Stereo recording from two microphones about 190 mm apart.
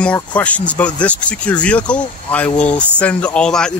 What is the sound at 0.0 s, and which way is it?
Speech, 5° left (ahead or behind).